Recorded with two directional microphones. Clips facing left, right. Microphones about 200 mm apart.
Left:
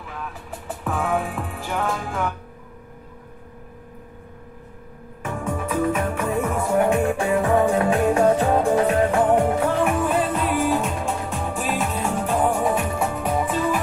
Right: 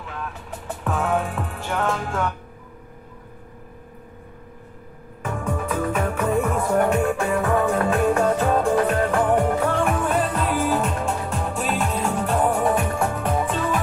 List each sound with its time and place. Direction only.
0.8 s music: centre (ahead or behind)
5.2 s music: 10° left (ahead or behind)